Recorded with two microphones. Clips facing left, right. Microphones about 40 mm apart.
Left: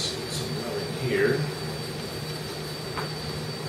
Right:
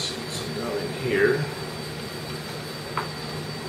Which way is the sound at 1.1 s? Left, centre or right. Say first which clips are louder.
Right 3 dB; centre.